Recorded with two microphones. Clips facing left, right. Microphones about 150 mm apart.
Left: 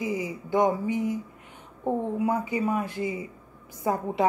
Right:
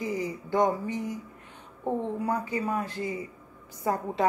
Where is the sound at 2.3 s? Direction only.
15° left (ahead or behind).